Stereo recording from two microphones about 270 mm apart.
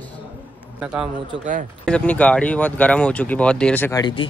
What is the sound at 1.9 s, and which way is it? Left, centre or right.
Speech, centre.